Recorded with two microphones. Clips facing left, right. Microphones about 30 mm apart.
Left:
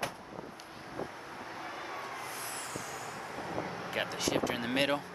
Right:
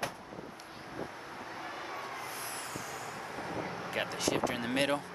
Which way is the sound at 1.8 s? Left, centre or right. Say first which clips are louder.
Even; centre.